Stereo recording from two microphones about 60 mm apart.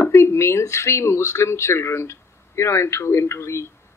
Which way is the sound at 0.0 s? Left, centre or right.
Left.